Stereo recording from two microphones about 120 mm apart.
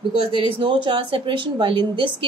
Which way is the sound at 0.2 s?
45° right (ahead or behind).